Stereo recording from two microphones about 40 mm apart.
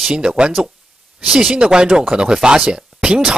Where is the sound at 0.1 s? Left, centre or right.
Right.